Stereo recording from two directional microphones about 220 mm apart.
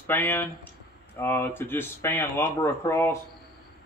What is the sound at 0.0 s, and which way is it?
A man's voice, 10° left (ahead or behind).